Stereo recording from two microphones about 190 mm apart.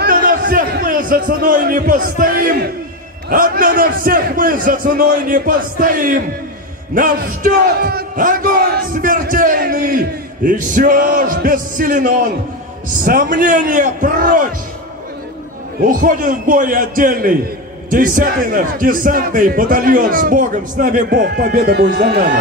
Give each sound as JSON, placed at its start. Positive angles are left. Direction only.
{"t": 0.0, "sound": "a sound", "side_deg": -45}
{"t": 3.3, "sound": "speech", "side_deg": -50}
{"t": 15.8, "sound": "speech", "side_deg": -45}
{"t": 21.1, "sound": "speech", "side_deg": -55}